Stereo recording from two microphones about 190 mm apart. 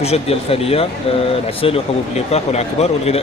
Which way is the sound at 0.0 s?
30° left (ahead or behind).